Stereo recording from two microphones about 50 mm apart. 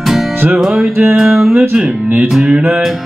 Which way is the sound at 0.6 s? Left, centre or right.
Centre.